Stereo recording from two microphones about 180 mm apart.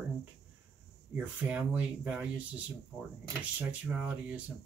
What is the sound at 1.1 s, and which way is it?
Speech, 5° right (ahead or behind).